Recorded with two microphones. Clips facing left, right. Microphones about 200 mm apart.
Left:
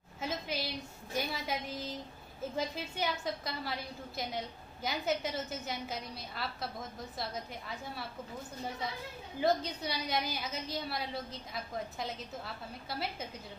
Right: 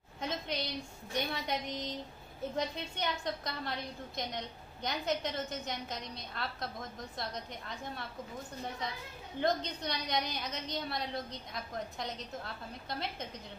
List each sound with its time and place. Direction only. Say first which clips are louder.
0.2 s a sound: even; 5° left (ahead or behind)
2.5 s a woman's voice: even; 5° left (ahead or behind)
9.4 s a woman's voice: left 2 dB; 5° left (ahead or behind)